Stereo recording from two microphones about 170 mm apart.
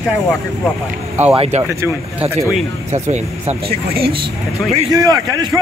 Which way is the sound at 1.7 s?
15° right (ahead or behind).